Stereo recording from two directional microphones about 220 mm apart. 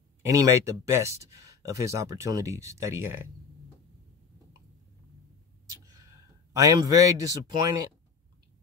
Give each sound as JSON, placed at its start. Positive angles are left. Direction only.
{"t": 0.2, "sound": "speech", "side_deg": -15}
{"t": 6.5, "sound": "speech", "side_deg": -15}